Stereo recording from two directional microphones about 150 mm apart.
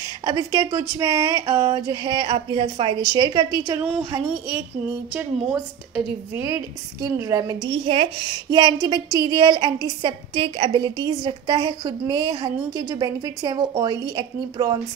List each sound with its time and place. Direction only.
0.0 s a woman's voice: 25° right (ahead or behind)
6.3 s a woman's voice: 20° right (ahead or behind)
7.6 s a woman's voice: 35° right (ahead or behind)